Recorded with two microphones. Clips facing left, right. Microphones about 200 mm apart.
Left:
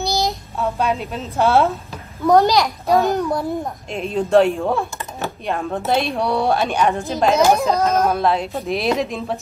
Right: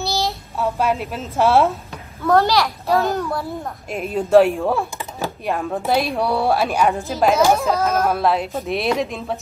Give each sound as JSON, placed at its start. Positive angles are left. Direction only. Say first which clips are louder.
{"t": 0.0, "sound": "child singing", "louder": "left 2 dB", "side_deg": 15}
{"t": 0.6, "sound": "speech", "louder": "right 1 dB", "side_deg": -5}
{"t": 2.2, "sound": "a child's voice", "louder": "left 2 dB", "side_deg": 15}
{"t": 3.9, "sound": "speech", "louder": "right 2 dB", "side_deg": -5}
{"t": 7.3, "sound": "a child's voice", "louder": "left 3 dB", "side_deg": 15}
{"t": 7.7, "sound": "speech", "louder": "left 1 dB", "side_deg": -5}